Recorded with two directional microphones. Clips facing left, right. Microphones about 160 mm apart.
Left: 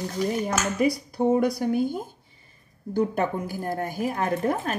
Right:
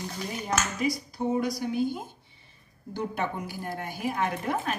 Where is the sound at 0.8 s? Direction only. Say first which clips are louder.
Left 6 dB; 60° left (ahead or behind).